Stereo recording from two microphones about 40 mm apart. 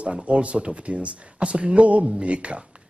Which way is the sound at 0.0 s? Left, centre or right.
Right.